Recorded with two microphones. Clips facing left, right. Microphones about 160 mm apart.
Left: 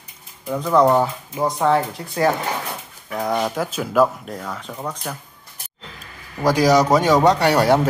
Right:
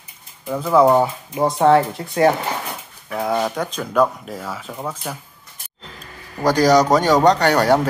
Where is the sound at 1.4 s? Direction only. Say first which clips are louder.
Right 4 dB; 30° right (ahead or behind).